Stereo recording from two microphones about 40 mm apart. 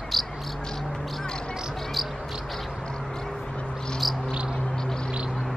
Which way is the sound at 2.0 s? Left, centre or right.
Centre.